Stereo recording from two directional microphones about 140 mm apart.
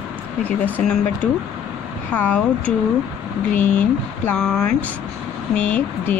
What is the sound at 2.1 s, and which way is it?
Speech, 10° left (ahead or behind).